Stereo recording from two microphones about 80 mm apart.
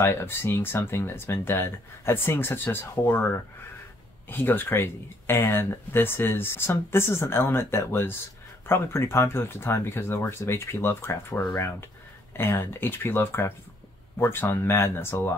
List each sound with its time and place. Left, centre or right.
0.0 s speech: left
4.3 s speech: left